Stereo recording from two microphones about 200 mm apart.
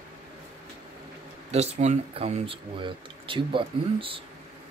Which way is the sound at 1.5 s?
35° right (ahead or behind).